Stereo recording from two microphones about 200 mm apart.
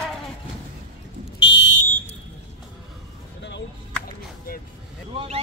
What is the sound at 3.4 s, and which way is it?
Music, 60° left (ahead or behind).